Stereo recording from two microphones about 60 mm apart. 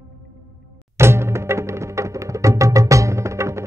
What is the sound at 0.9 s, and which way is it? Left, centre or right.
Music, right.